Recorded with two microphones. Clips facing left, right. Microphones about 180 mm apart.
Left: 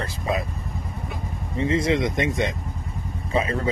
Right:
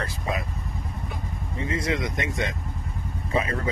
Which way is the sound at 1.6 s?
25° left (ahead or behind).